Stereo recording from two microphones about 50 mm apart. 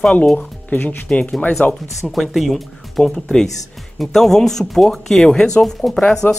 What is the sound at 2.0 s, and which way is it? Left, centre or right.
Speech, centre.